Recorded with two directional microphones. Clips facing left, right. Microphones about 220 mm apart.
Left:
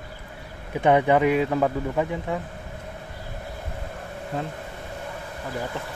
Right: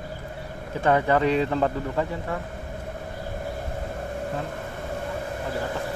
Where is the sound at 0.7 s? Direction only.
15° left (ahead or behind).